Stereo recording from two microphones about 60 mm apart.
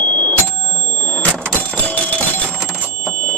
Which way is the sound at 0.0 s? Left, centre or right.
Left.